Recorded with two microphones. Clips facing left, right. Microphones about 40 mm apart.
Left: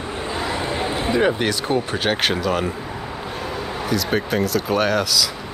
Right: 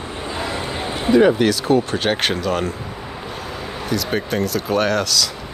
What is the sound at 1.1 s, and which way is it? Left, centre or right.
Speech, centre.